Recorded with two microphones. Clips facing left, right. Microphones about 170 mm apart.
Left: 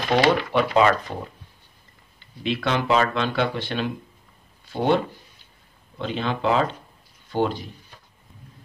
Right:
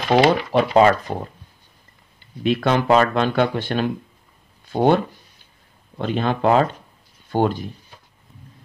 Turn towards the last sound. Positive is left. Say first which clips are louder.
# right 4 dB
turn(degrees=-50)  # may be behind; listen again after turning